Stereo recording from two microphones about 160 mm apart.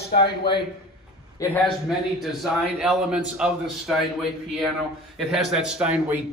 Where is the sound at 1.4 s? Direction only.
20° left (ahead or behind).